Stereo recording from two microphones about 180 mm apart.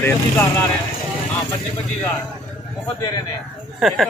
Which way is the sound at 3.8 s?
Centre (ahead or behind).